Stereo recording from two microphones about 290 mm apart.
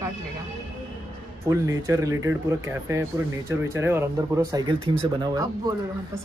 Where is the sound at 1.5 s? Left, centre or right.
Centre.